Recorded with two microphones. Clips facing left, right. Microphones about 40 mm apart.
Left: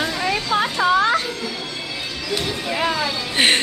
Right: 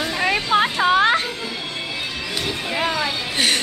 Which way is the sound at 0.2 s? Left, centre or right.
Right.